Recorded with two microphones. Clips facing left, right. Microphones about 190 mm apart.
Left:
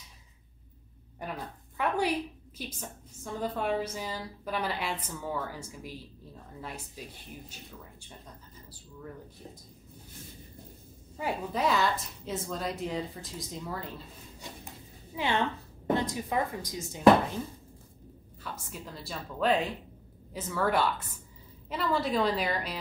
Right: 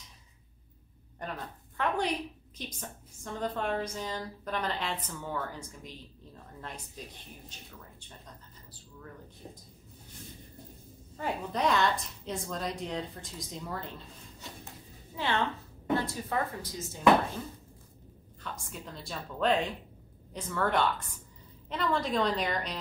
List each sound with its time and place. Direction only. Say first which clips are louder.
1.2 s a woman's voice: left 1 dB; 10° left (ahead or behind)
11.1 s a woman's voice: left 1 dB; 5° left (ahead or behind)
15.1 s a woman's voice: left 1 dB; 15° left (ahead or behind)
18.4 s a woman's voice: left 1 dB; centre (ahead or behind)